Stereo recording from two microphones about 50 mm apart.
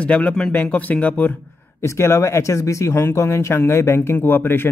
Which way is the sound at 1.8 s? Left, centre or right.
Left.